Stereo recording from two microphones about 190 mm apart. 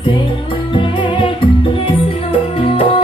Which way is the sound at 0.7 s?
25° left (ahead or behind).